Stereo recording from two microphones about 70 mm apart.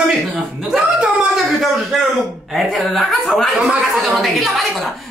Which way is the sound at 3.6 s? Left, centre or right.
Centre.